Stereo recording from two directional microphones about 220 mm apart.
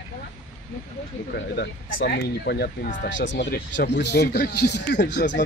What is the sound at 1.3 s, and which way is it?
Speech, 50° left (ahead or behind).